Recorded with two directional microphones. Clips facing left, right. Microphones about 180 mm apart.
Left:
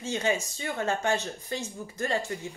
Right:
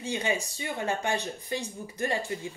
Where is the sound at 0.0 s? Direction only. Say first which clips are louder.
Left 2 dB; 15° right (ahead or behind).